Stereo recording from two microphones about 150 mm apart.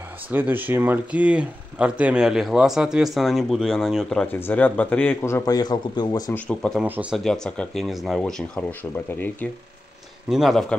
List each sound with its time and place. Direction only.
0.3 s a man's voice: 10° right (ahead or behind); by 6.3 s 25° left (ahead or behind)
6.3 s a man's voice: 10° left (ahead or behind)
6.8 s speech: 5° right (ahead or behind)
7.2 s speech: 5° left (ahead or behind)
10.3 s speech: centre (ahead or behind)